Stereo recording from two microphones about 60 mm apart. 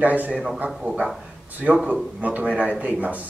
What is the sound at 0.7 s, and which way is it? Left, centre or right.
Speech, centre.